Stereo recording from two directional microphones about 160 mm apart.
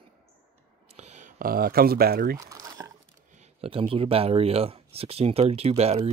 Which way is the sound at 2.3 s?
20° right (ahead or behind).